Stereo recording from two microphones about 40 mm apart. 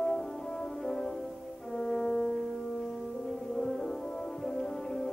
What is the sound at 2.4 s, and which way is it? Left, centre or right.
Music, centre.